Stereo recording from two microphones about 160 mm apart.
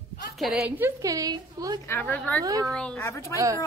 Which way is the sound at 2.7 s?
5° left (ahead or behind).